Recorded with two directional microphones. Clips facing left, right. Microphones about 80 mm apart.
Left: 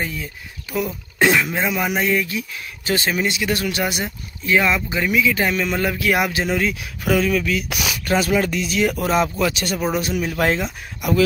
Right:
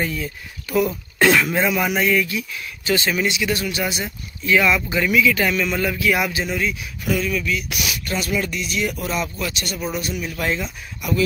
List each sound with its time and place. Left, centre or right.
0.0 s speech: centre
2.0 s speech: left
4.0 s speech: left
6.3 s speech: left
9.9 s speech: left
10.3 s speech: left